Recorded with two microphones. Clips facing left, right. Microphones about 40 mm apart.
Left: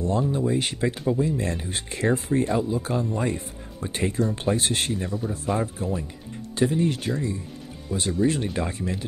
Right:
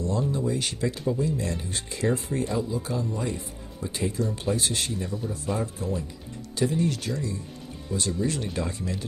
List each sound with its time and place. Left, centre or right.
0.2 s speech: centre
0.5 s speech: left